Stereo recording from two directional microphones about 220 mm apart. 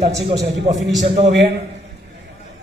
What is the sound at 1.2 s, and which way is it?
Speech, 50° right (ahead or behind).